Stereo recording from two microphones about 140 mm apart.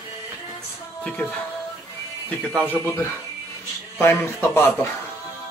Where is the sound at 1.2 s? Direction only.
15° left (ahead or behind).